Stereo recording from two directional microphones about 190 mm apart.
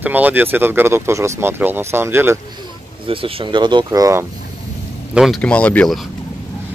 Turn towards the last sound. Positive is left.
turn(degrees=5)  # may be behind; listen again after turning